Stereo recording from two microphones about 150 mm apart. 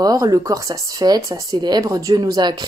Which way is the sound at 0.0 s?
25° right (ahead or behind).